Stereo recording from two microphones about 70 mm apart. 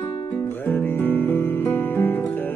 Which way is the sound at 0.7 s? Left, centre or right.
Left.